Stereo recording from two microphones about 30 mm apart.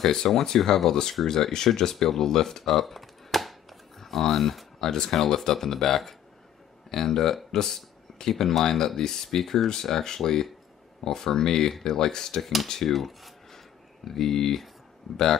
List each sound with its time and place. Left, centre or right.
0.0 s speech: centre
4.7 s speech: centre
12.4 s speech: centre
12.6 s speech: centre
12.9 s speech: centre